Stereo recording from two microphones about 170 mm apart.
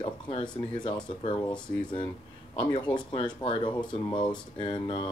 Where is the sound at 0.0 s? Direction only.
30° left (ahead or behind).